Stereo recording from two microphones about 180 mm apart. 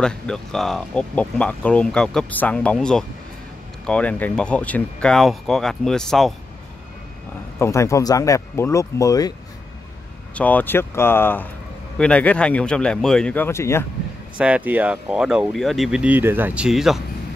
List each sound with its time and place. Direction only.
0.0 s speech: 5° left (ahead or behind)
7.5 s speech: 15° left (ahead or behind)
10.3 s speech: 10° left (ahead or behind)
14.4 s speech: 10° right (ahead or behind)